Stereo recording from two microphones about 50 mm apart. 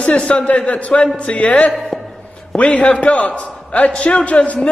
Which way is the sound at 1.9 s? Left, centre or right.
Centre.